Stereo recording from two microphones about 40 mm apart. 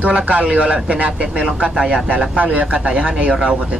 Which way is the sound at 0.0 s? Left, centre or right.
Right.